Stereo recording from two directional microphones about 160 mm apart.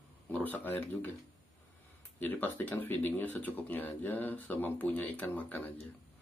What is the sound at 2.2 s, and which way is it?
Speech, 10° left (ahead or behind).